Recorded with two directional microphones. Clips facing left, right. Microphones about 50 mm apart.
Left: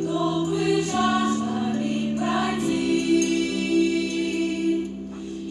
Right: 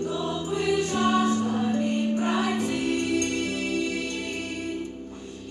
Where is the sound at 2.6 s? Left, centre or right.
Right.